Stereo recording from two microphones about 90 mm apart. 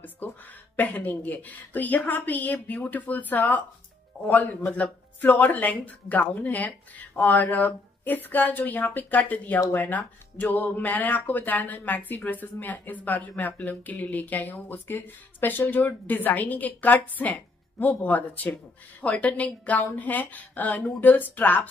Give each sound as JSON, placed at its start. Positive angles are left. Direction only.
{"t": 0.0, "sound": "speech", "side_deg": 20}